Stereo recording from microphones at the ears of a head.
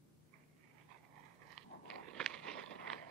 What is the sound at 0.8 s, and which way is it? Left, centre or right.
Dog, right.